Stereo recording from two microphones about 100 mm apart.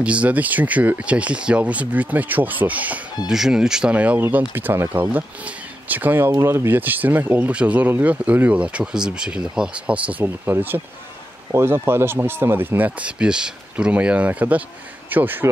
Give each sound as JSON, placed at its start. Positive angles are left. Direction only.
{"t": 0.0, "sound": "speech", "side_deg": -15}
{"t": 3.3, "sound": "speech", "side_deg": -5}